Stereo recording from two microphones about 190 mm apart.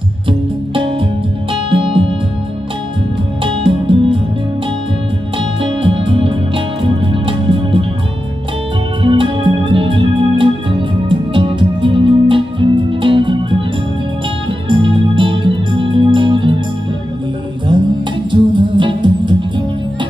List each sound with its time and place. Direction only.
0.3 s music: 30° right (ahead or behind)
3.6 s music: 30° right (ahead or behind)
5.6 s music: 30° right (ahead or behind)
9.0 s music: 25° right (ahead or behind)
14.7 s music: 25° right (ahead or behind)
18.3 s music: 25° right (ahead or behind)